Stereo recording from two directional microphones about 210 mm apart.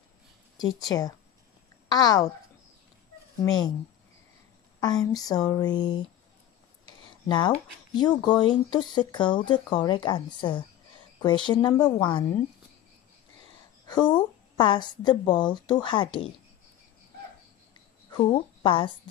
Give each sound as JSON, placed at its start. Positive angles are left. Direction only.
{"t": 0.6, "sound": "speech", "side_deg": 20}
{"t": 3.4, "sound": "speech", "side_deg": 20}
{"t": 4.7, "sound": "speech", "side_deg": 20}
{"t": 13.8, "sound": "speech", "side_deg": 20}
{"t": 18.2, "sound": "speech", "side_deg": 25}